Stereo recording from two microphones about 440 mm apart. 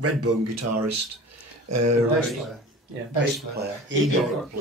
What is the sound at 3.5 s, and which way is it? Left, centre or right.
Speech, right.